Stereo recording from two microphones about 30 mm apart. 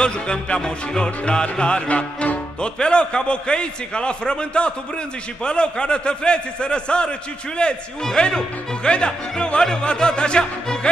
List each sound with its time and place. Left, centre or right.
0.0 s music: left
1.2 s a man's voice: left
1.9 s music: left
2.6 s a man's voice: left
8.2 s music: left
8.8 s a man's voice: left